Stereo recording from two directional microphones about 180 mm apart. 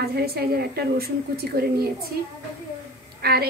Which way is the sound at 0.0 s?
60° right (ahead or behind).